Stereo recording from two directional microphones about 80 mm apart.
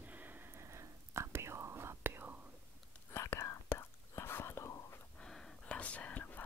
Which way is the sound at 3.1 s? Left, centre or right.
Left.